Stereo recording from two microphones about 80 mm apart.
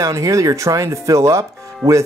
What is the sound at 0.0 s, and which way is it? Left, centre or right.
Speech, right.